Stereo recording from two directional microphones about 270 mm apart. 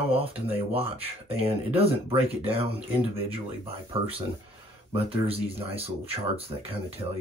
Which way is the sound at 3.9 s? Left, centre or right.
Right.